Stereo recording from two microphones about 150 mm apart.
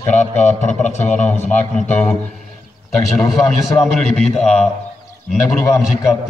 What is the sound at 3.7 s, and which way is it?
Speech, 5° left (ahead or behind).